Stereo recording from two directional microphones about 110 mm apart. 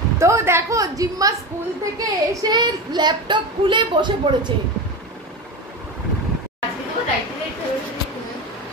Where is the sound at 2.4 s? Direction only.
40° right (ahead or behind).